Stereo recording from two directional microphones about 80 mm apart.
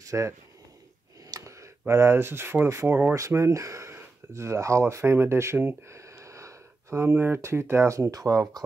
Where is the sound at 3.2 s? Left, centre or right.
Right.